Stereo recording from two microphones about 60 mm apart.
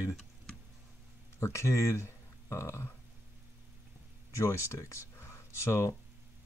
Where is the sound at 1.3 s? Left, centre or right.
Left.